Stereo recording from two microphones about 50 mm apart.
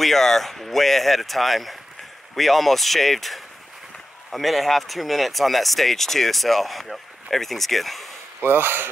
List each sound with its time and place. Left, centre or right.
0.0 s speech: centre
8.4 s speech: right